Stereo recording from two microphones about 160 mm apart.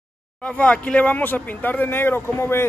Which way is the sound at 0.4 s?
10° left (ahead or behind).